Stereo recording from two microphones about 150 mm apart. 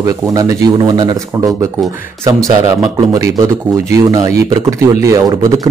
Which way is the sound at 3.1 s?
20° right (ahead or behind).